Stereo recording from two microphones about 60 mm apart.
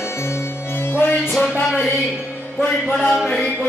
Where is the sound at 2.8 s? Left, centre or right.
Left.